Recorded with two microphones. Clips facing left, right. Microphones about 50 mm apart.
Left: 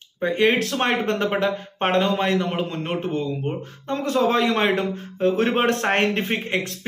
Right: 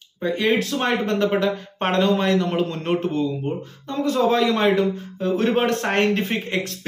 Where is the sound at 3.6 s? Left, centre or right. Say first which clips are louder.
Right 2 dB; left.